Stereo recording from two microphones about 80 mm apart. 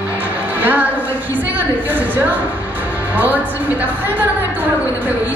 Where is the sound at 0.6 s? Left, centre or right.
Right.